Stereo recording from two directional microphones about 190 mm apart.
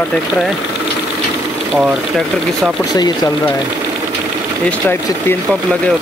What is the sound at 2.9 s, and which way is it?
Speech, 20° left (ahead or behind).